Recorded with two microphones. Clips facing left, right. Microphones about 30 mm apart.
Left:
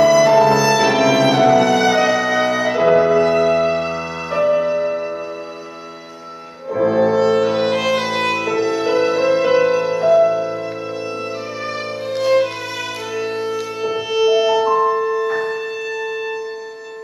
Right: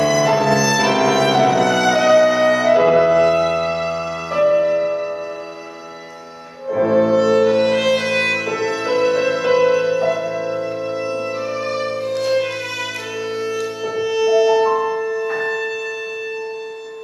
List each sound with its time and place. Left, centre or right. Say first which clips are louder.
0.0 s music: left 4 dB; centre
6.7 s music: even; centre
12.2 s music: left 5 dB; centre
13.4 s music: left 1 dB; centre
14.5 s music: left 1 dB; centre